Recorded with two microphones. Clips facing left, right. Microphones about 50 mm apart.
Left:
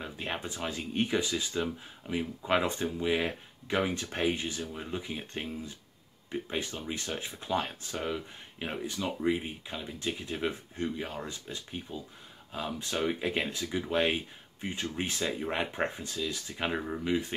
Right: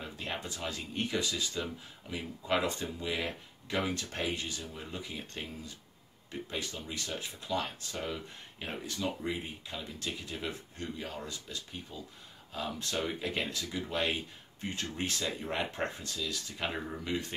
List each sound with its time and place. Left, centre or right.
0.0 s speech: left